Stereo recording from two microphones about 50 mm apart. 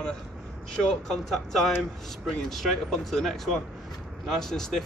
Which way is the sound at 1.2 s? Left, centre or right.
Centre.